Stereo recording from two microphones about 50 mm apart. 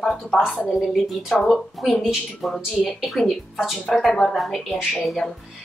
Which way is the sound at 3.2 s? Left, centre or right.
Centre.